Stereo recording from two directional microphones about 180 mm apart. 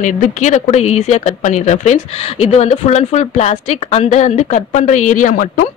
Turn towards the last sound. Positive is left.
turn(degrees=50)  # may be behind; listen again after turning